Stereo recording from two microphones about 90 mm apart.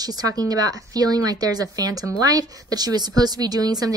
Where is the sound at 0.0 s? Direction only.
45° right (ahead or behind).